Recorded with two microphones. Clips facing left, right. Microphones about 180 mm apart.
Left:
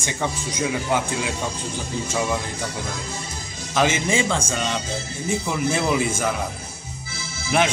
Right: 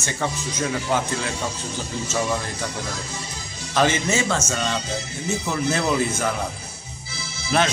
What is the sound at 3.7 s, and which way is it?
Speech, 10° left (ahead or behind).